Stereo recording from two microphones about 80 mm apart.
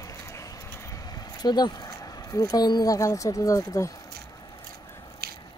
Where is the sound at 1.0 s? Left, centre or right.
Left.